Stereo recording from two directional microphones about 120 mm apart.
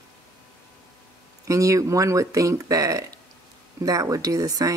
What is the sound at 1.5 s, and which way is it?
Speech, 25° right (ahead or behind).